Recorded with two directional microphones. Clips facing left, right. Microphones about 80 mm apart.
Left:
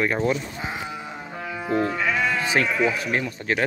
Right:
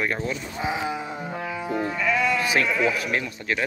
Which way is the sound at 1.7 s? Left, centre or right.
Left.